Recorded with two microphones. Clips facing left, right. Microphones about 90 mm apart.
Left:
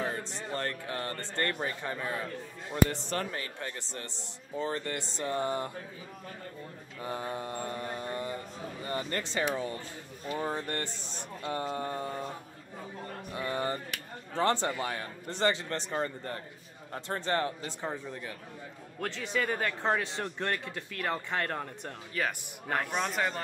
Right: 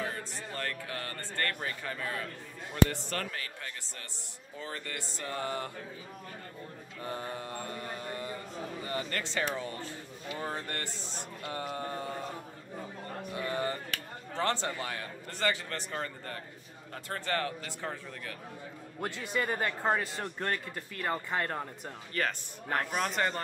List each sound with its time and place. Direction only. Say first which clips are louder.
0.0 s a man's voice: left 3 dB; 25° left (ahead or behind)
7.0 s a man's voice: left 2 dB; 20° left (ahead or behind)
9.3 s a man's voice: left 3 dB; 15° left (ahead or behind)
13.3 s a man's voice: left 1 dB; 25° left (ahead or behind)
18.9 s speech: left 1 dB; 10° right (ahead or behind)